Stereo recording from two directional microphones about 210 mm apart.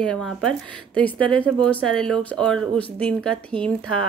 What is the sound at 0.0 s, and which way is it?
A woman's voice, 5° left (ahead or behind).